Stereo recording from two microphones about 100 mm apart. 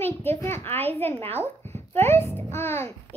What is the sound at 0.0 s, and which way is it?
A child's voice, 20° left (ahead or behind).